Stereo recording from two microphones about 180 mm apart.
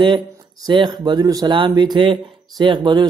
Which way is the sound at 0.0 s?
25° right (ahead or behind).